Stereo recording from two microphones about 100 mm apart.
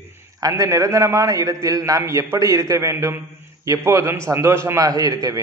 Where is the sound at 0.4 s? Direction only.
35° right (ahead or behind).